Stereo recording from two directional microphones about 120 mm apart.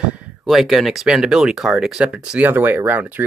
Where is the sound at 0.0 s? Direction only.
10° right (ahead or behind).